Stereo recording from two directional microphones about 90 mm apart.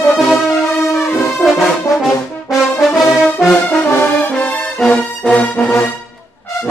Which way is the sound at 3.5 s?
20° left (ahead or behind).